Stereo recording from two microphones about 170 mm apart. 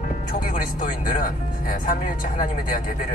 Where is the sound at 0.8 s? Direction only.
55° left (ahead or behind).